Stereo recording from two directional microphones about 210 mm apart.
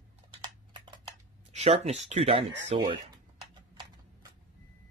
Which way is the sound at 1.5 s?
30° right (ahead or behind).